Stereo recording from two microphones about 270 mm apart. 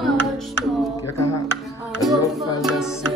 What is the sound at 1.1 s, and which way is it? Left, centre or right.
Music, left.